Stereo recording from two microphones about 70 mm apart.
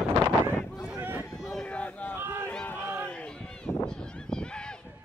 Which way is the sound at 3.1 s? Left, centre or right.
Centre.